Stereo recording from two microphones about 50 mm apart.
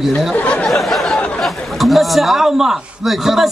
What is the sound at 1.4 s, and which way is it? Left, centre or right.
A man's voice, centre.